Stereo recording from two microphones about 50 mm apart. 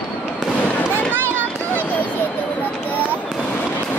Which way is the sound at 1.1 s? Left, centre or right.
Right.